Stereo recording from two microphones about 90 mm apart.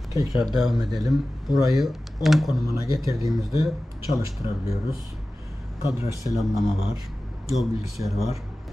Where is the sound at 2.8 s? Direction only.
40° right (ahead or behind).